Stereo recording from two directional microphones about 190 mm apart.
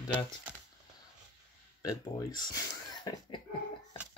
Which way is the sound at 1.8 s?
20° left (ahead or behind).